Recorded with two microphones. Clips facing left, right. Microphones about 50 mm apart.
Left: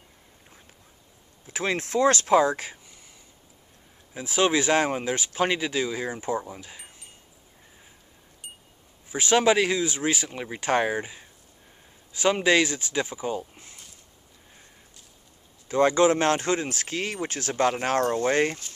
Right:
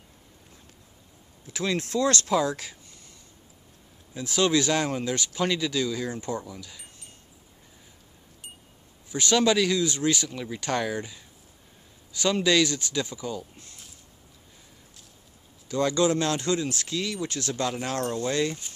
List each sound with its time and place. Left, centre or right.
1.5 s speech: left
4.1 s speech: centre
9.1 s speech: centre
15.7 s speech: left